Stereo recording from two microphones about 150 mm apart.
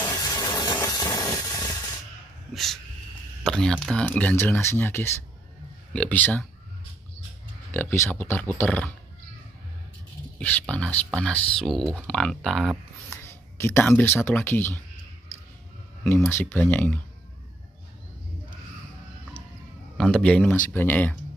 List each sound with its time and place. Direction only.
0.0 s a sound: 25° left (ahead or behind)
2.5 s dog: centre (ahead or behind)
3.4 s speech: 5° left (ahead or behind)
7.7 s speech: 15° left (ahead or behind)
10.4 s speech: 10° left (ahead or behind)
13.1 s speech: 15° left (ahead or behind)
16.3 s speech: 15° left (ahead or behind)
20.0 s speech: 5° left (ahead or behind)